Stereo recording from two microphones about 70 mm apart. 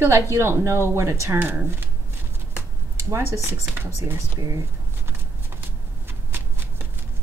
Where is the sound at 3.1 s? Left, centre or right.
Right.